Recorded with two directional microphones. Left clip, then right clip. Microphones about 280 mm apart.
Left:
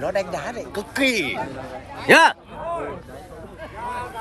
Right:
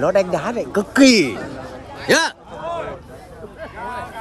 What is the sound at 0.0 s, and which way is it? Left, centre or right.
Speech, right.